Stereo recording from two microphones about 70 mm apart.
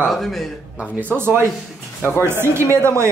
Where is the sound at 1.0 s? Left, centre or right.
Right.